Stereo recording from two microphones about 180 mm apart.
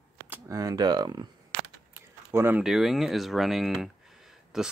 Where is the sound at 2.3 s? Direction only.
10° right (ahead or behind).